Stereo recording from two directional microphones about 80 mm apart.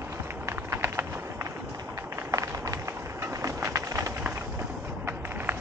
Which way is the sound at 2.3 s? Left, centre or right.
Right.